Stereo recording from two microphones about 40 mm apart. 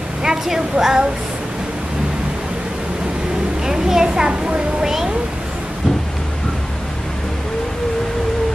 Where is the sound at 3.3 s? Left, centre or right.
Centre.